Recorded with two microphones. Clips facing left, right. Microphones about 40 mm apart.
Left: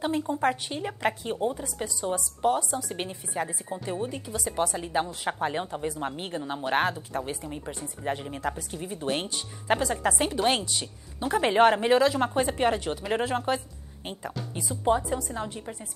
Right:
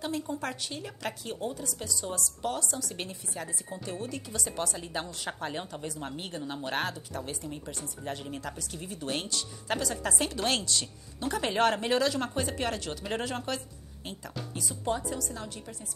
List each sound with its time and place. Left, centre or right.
0.0 s speech: left